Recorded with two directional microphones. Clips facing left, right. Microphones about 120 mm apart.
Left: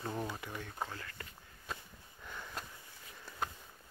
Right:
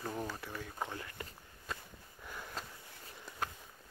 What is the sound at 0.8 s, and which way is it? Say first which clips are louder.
Speech: right 2 dB; 20° right (ahead or behind).